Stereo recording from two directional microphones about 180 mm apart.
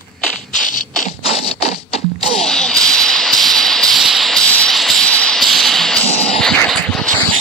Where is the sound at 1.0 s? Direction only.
35° left (ahead or behind).